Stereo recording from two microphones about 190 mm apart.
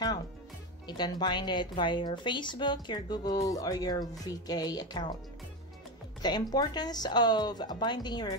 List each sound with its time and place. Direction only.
0.8 s speech: 25° left (ahead or behind)
6.2 s speech: 20° left (ahead or behind)